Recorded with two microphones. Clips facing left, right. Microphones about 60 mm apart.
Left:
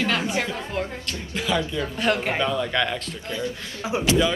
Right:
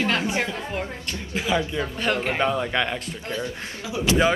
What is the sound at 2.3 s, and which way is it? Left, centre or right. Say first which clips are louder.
Speech: even; right.